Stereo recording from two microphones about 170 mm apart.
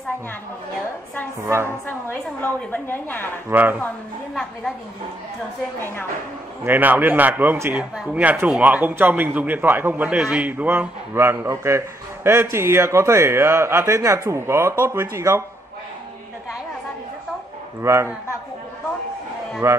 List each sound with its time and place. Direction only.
1.4 s a man's voice: 15° right (ahead or behind)
1.9 s a woman's voice: 10° left (ahead or behind)
3.4 s a man's voice: 10° right (ahead or behind)
6.6 s a man's voice: 10° right (ahead or behind)
17.8 s a man's voice: 15° right (ahead or behind)
19.6 s a man's voice: 15° right (ahead or behind)